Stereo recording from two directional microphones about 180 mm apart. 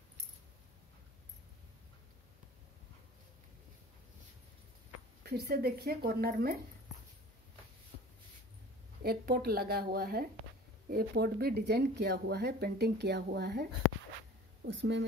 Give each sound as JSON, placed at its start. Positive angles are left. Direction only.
{"t": 5.2, "sound": "speech", "side_deg": -60}
{"t": 9.0, "sound": "speech", "side_deg": -60}
{"t": 14.7, "sound": "speech", "side_deg": -85}